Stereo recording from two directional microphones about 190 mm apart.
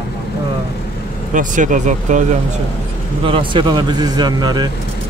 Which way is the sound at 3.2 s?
25° right (ahead or behind).